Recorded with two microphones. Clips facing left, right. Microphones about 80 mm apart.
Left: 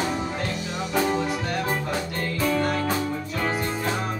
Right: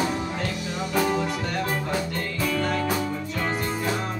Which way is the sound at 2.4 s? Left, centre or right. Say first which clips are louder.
Left 3 dB; left.